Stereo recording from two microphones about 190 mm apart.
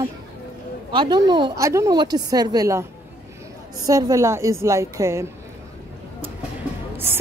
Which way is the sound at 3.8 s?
20° right (ahead or behind).